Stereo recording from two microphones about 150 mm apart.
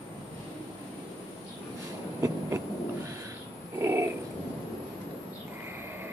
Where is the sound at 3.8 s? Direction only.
15° right (ahead or behind).